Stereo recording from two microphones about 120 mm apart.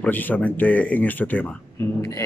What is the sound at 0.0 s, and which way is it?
Speech, 15° left (ahead or behind).